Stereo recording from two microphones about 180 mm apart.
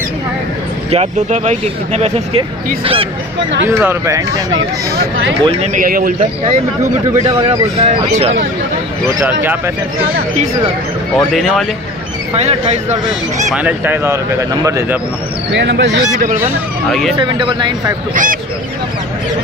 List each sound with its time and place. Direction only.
0.8 s speech: 35° right (ahead or behind)
3.6 s speech: 15° right (ahead or behind)
4.6 s speech: 90° right
5.4 s speech: 35° right (ahead or behind); by 6.1 s 50° right (ahead or behind)
6.8 s speech: 35° right (ahead or behind)
9.2 s speech: 10° right (ahead or behind)
11.1 s speech: centre (ahead or behind)
12.4 s speech: 35° right (ahead or behind)
13.5 s speech: 10° right (ahead or behind)
15.5 s speech: 75° right (ahead or behind)
15.9 s speech: 45° right (ahead or behind)
17.2 s speech: 25° right (ahead or behind)
18.1 s speech: 45° right (ahead or behind)